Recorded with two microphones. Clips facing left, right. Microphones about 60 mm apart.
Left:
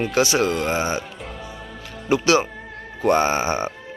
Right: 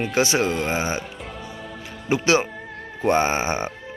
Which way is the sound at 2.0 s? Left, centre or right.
Right.